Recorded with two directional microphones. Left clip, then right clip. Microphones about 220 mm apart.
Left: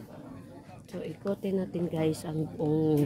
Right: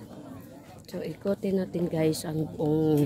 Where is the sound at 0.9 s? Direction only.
15° right (ahead or behind).